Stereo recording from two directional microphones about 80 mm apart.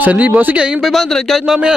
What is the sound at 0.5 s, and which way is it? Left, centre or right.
Speech, centre.